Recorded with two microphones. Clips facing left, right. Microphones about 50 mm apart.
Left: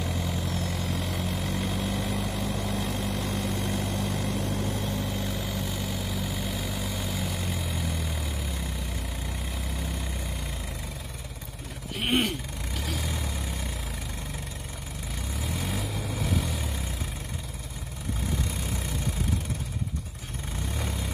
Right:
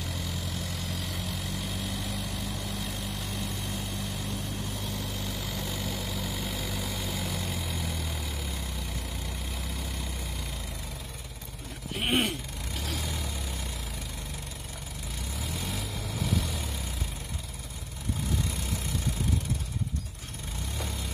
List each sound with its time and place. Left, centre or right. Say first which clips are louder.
0.0 s vehicle: left 5 dB; centre
1.0 s vehicle: left 5 dB; left
1.4 s vehicle: left 5 dB; left
2.8 s vehicle: left 6 dB; left
4.7 s vehicle: left 5 dB; centre
11.9 s vehicle: left 1 dB; centre
15.4 s vehicle: left 4 dB; centre